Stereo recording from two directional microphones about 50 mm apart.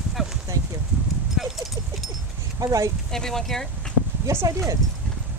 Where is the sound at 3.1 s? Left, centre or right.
Centre.